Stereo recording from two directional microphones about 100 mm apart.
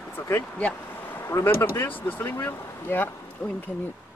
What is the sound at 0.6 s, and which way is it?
Speech, 15° left (ahead or behind).